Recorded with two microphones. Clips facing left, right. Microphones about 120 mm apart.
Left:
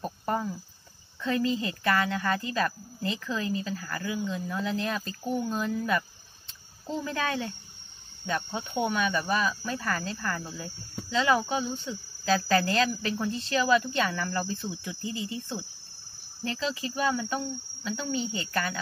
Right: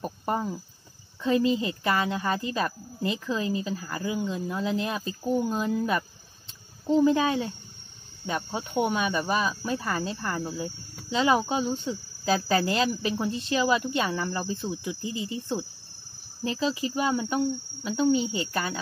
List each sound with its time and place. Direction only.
0.0 s cricket: 20° right (ahead or behind)
1.2 s speech: 20° right (ahead or behind)
6.9 s speech: 20° right (ahead or behind)
14.4 s cricket: 15° right (ahead or behind)
14.8 s speech: 20° right (ahead or behind)